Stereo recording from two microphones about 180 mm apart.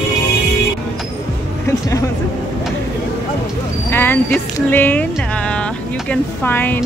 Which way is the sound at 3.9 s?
10° left (ahead or behind).